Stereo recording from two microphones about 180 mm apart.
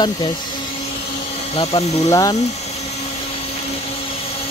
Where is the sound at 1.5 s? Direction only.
35° left (ahead or behind).